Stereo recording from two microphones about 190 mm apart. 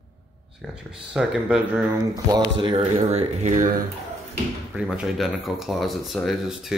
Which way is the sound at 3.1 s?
35° right (ahead or behind).